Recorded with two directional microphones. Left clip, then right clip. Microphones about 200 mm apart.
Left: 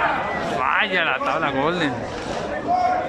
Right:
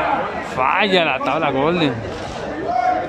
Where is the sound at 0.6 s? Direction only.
20° right (ahead or behind).